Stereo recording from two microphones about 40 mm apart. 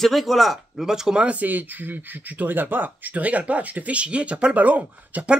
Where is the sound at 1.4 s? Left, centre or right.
Right.